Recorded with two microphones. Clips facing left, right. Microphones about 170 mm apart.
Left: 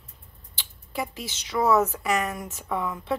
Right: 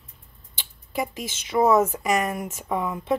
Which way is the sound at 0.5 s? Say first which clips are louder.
Right 3 dB; 15° right (ahead or behind).